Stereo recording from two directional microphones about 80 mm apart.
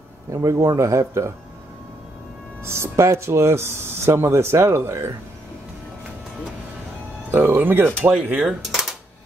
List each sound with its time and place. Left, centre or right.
0.3 s speech: right
2.6 s speech: right
7.2 s speech: right
8.5 s typewriter: centre